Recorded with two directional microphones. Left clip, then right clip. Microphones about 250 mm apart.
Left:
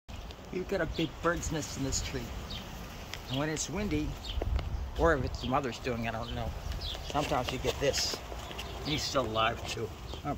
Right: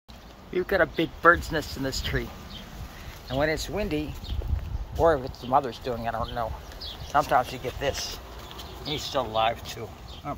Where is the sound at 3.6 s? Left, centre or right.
Centre.